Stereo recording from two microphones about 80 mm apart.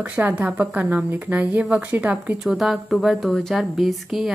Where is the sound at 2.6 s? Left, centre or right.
Centre.